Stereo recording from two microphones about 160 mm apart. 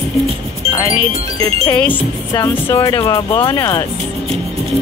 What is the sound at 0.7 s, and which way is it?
Speech, 20° left (ahead or behind).